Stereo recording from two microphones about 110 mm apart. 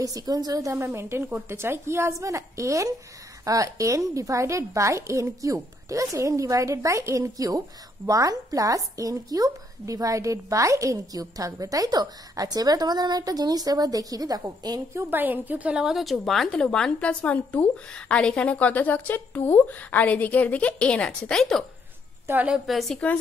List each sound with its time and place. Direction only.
0.0 s a woman's voice: 35° right (ahead or behind)
15.0 s a woman's voice: 15° right (ahead or behind); by 21.6 s 5° left (ahead or behind)
22.2 s a woman's voice: 20° right (ahead or behind)
22.5 s a woman's voice: centre (ahead or behind)